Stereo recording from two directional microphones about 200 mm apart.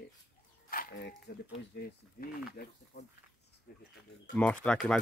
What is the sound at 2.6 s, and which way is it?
Speech, 50° left (ahead or behind).